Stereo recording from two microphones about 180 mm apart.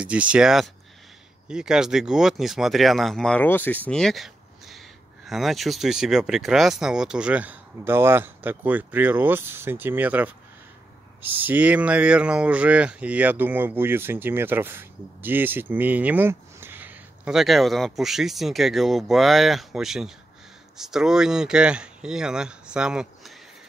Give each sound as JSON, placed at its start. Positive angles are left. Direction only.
{"t": 0.0, "sound": "speech", "side_deg": -5}
{"t": 11.3, "sound": "speech", "side_deg": -10}